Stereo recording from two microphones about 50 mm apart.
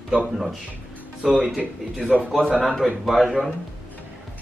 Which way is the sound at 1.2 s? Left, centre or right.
Centre.